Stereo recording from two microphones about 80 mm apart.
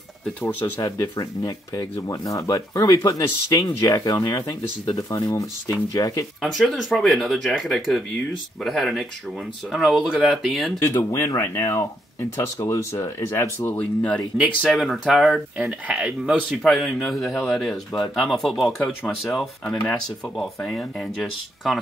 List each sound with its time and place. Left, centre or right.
0.7 s speech: left
6.4 s speech: centre
10.8 s speech: left
13.7 s speech: centre
14.6 s speech: centre
16.6 s speech: centre